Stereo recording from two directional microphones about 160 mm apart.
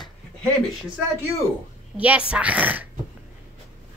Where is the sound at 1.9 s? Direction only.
10° right (ahead or behind).